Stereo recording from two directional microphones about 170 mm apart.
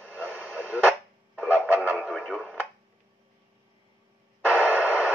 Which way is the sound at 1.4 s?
10° right (ahead or behind).